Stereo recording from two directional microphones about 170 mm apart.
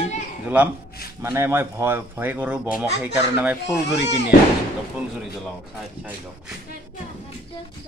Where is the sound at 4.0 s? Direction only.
90° left.